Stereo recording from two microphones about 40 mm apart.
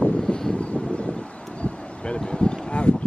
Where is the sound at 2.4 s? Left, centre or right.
Left.